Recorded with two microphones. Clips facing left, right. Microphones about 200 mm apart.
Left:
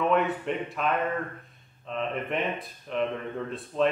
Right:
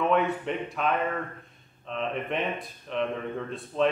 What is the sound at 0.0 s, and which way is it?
Speech, centre (ahead or behind).